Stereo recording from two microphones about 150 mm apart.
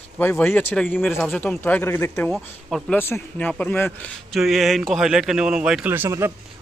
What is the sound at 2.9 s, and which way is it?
Speech, 15° left (ahead or behind).